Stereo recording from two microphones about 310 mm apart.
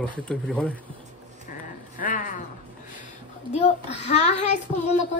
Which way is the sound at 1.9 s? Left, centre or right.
Left.